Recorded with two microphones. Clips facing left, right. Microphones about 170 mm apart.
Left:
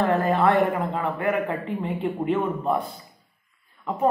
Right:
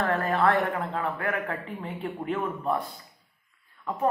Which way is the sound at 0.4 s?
10° left (ahead or behind).